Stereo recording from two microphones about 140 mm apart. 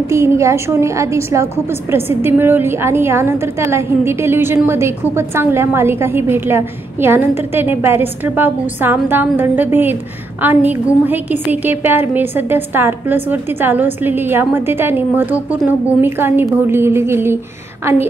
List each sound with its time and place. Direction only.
0.1 s a woman's voice: 20° right (ahead or behind)